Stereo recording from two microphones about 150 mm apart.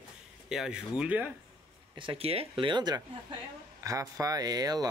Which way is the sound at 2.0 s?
40° right (ahead or behind).